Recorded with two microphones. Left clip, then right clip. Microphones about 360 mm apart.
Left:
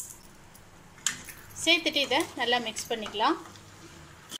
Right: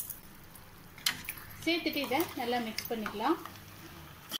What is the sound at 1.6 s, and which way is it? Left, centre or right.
Speech, left.